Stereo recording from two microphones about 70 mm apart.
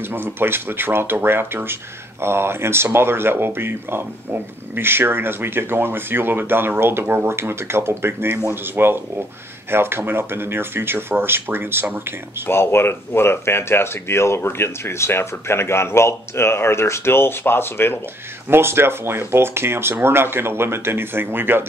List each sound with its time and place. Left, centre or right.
0.1 s speech: right
12.4 s speech: left
18.5 s speech: right